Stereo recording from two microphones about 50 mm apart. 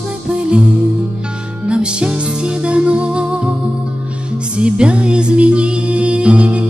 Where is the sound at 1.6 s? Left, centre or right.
Centre.